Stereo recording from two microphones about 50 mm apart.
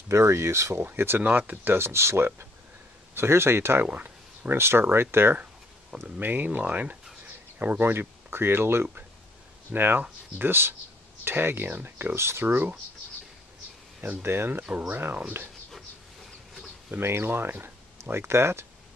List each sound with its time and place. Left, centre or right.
0.1 s speech: right
0.8 s speech: right
3.8 s a sound: right
4.6 s speech: right
6.0 s speech: right
12.2 s speech: right
14.2 s speech: right
14.9 s speech: right
17.0 s speech: right